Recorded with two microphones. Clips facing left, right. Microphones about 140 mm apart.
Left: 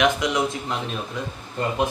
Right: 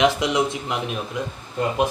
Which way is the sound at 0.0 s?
25° right (ahead or behind).